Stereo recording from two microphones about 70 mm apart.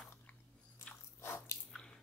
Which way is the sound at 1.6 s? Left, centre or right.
Centre.